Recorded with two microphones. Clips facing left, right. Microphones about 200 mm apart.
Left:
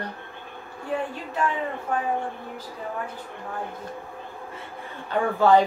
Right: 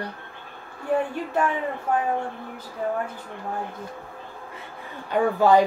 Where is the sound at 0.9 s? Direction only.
50° right (ahead or behind).